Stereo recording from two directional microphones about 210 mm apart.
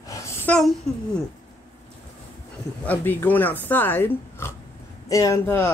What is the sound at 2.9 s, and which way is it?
Speech, 10° left (ahead or behind).